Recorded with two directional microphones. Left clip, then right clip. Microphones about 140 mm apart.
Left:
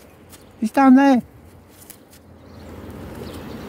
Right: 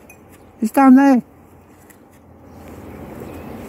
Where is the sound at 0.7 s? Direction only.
40° left (ahead or behind).